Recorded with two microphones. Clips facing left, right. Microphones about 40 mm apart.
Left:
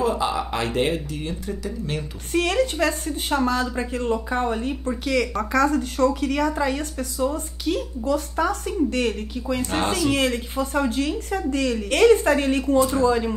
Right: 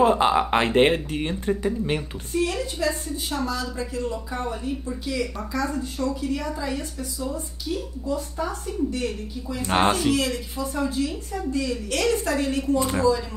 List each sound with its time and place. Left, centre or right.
0.0 s speech: right
2.3 s speech: left
9.7 s speech: right
10.1 s speech: left
12.0 s speech: left